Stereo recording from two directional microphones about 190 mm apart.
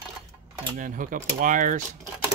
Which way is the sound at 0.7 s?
45° right (ahead or behind).